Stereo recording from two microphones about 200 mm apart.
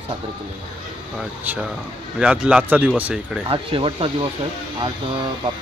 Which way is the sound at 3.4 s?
25° right (ahead or behind).